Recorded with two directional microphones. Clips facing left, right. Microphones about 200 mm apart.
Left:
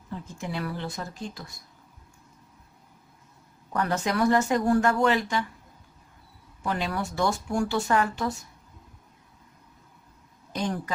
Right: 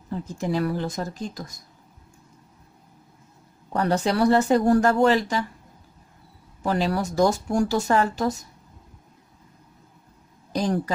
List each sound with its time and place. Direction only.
0.1 s speech: 40° right (ahead or behind)
3.7 s speech: 30° right (ahead or behind)
6.6 s speech: 35° right (ahead or behind)
10.5 s a woman's voice: 35° right (ahead or behind)